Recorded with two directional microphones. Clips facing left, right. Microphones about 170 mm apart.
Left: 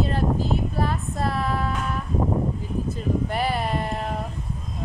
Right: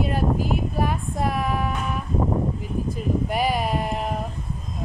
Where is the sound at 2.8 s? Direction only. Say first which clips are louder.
Right 1 dB; 10° right (ahead or behind).